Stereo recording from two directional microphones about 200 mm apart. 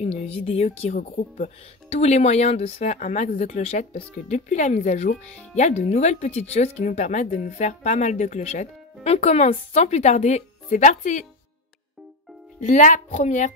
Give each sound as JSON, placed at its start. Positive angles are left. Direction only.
{"t": 0.0, "sound": "speech", "side_deg": 30}
{"t": 12.6, "sound": "speech", "side_deg": 40}